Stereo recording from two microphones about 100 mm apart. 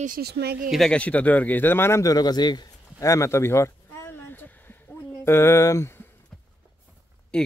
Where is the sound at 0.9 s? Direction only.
15° left (ahead or behind); by 3.1 s 45° left (ahead or behind).